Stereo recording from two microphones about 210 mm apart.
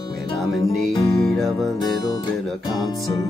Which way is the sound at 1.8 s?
20° left (ahead or behind).